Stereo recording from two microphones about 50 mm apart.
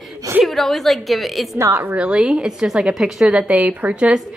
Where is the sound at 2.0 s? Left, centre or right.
Centre.